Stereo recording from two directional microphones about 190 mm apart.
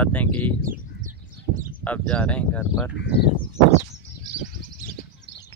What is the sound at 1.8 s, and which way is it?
Speech, 5° left (ahead or behind).